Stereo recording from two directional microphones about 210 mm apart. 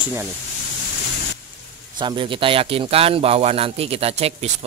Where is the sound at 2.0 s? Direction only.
25° right (ahead or behind).